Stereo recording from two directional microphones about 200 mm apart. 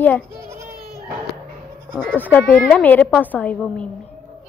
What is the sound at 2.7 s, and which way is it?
Speech, 10° left (ahead or behind).